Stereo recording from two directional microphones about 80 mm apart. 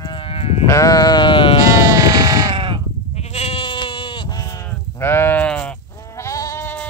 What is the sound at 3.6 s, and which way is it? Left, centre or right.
Sheep, left.